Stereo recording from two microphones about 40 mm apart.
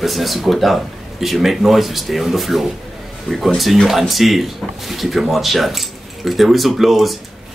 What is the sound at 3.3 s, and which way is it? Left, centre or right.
Speech, centre.